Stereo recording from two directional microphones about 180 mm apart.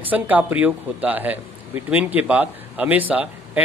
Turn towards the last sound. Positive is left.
turn(degrees=-10)  # may be behind; listen again after turning